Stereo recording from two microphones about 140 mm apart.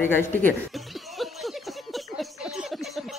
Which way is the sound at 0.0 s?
15° left (ahead or behind).